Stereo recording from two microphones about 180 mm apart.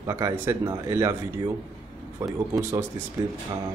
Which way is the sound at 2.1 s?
20° right (ahead or behind).